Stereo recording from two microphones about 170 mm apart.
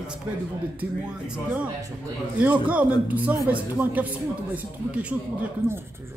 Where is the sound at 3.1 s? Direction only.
10° right (ahead or behind).